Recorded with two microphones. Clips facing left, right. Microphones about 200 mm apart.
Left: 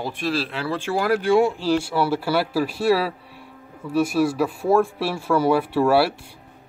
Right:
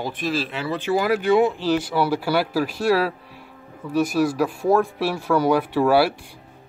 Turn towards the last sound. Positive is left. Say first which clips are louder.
# even
turn(degrees=5)  # may be behind; listen again after turning